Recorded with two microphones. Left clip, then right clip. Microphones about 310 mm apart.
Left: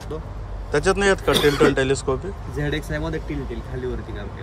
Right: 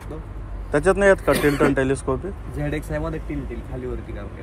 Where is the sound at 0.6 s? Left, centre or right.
Centre.